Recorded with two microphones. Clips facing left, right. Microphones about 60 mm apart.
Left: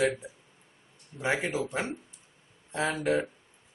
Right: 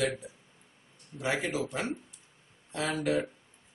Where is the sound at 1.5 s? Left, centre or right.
Left.